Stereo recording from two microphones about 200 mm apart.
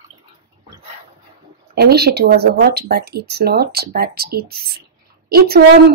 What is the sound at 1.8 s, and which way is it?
Speech, 55° right (ahead or behind).